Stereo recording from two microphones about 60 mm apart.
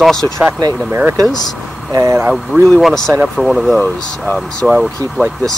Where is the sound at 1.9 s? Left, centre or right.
Right.